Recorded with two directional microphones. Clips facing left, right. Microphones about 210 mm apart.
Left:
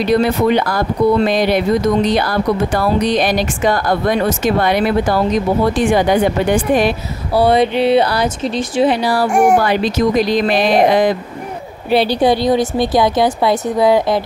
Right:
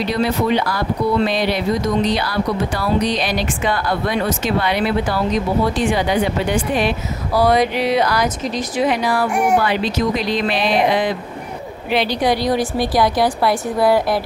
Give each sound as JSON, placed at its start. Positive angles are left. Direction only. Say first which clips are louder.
{"t": 0.0, "sound": "speech", "louder": "left 5 dB", "side_deg": 50}
{"t": 7.3, "sound": "a woman's voice", "louder": "left 3 dB", "side_deg": 30}
{"t": 9.4, "sound": "speech", "louder": "left 6 dB", "side_deg": 45}
{"t": 11.9, "sound": "a woman's voice", "louder": "left 5 dB", "side_deg": 35}